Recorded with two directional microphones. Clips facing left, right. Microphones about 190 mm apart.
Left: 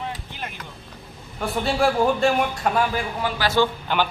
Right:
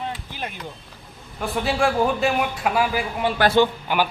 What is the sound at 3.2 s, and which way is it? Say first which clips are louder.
Speech: right 6 dB; 25° right (ahead or behind).